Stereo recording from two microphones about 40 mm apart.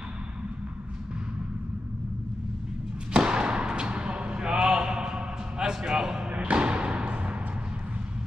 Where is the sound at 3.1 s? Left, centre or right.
Right.